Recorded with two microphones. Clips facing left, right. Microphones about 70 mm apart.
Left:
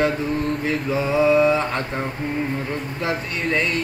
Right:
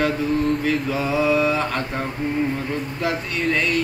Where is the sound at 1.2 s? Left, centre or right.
Centre.